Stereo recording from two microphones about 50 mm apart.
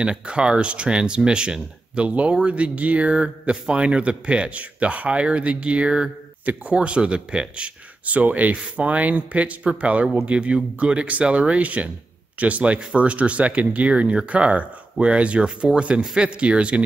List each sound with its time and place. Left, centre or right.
0.0 s speech: centre